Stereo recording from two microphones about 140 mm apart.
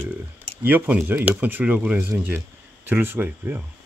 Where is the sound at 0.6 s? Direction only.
15° right (ahead or behind).